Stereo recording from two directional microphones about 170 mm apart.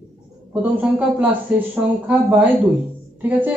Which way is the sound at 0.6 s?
10° right (ahead or behind).